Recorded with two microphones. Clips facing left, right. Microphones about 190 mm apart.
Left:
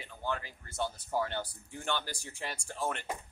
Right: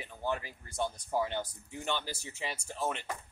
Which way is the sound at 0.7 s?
5° left (ahead or behind).